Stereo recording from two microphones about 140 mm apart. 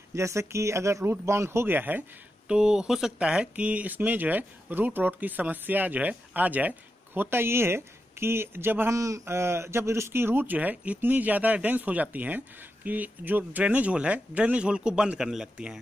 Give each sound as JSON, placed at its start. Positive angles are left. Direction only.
{"t": 0.1, "sound": "speech", "side_deg": -20}